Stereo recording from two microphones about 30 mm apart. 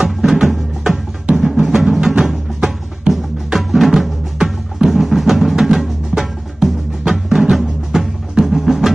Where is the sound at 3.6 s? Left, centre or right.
Centre.